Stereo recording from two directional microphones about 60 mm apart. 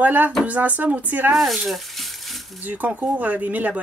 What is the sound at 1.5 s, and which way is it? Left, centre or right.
Speech, centre.